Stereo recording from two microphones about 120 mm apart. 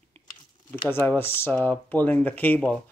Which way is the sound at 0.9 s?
15° left (ahead or behind).